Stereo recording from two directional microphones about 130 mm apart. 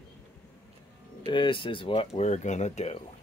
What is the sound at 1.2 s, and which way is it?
Speech, 40° left (ahead or behind).